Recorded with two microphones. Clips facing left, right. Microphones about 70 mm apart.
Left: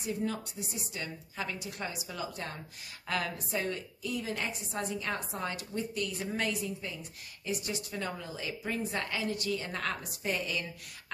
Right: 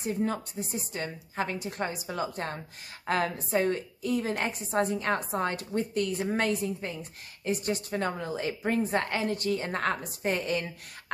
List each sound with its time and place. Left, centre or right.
0.0 s a woman's voice: right